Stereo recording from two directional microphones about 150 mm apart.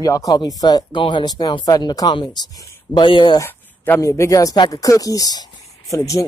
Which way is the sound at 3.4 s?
15° left (ahead or behind).